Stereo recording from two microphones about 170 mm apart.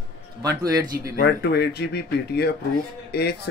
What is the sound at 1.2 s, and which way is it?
Speech, 75° left (ahead or behind).